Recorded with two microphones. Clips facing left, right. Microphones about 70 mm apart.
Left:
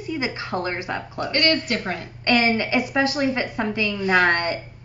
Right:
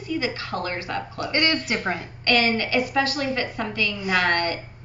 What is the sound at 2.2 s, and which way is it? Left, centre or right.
A woman's voice, left.